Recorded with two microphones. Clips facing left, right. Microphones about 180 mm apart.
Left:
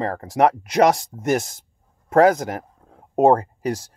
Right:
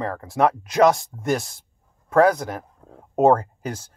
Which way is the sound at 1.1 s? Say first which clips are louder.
Left 3 dB; 25° left (ahead or behind).